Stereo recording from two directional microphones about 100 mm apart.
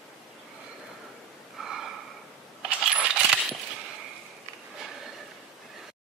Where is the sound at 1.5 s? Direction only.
5° right (ahead or behind).